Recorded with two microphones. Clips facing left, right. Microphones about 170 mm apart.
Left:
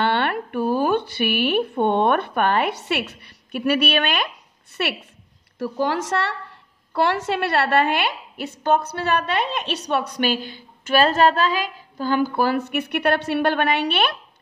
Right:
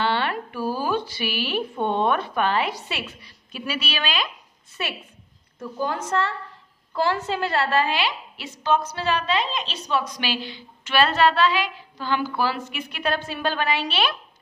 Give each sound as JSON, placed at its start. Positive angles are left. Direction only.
{"t": 0.0, "sound": "a woman's voice", "side_deg": 60}
{"t": 5.6, "sound": "a woman's voice", "side_deg": 90}
{"t": 6.9, "sound": "a woman's voice", "side_deg": 70}